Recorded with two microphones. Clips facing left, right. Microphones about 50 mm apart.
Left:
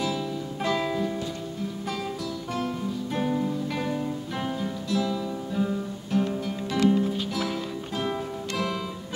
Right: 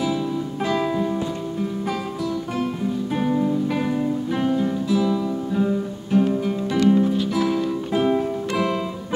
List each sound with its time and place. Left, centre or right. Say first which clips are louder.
0.7 s music: right 4 dB; centre
3.2 s music: right 5 dB; centre
7.3 s music: right 8 dB; centre
7.9 s music: right 9 dB; centre